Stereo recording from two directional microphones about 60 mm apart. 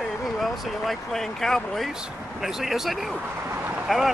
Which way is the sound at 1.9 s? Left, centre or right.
Centre.